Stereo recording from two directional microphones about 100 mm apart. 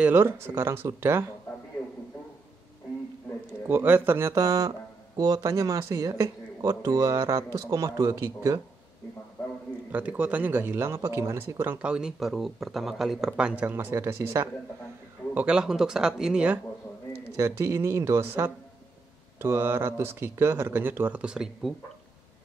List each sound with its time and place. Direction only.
0.0 s speech: 20° right (ahead or behind)
3.6 s speech: 20° right (ahead or behind)
4.5 s speech: 40° right (ahead or behind)
9.8 s speech: 15° right (ahead or behind)
11.9 s speech: 5° right (ahead or behind); by 14.5 s 30° right (ahead or behind)
15.3 s speech: 10° right (ahead or behind)
17.4 s speech: 30° right (ahead or behind); by 21.7 s 5° right (ahead or behind)